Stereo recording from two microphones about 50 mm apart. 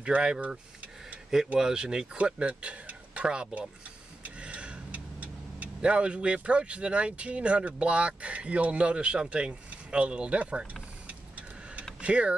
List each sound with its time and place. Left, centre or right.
0.0 s speech: centre
1.6 s speech: centre
4.2 s vehicle: right
8.2 s speech: right
11.1 s vehicle: right
12.0 s speech: right